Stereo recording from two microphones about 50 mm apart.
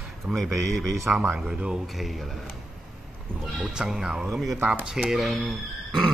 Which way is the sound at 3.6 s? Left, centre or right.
Centre.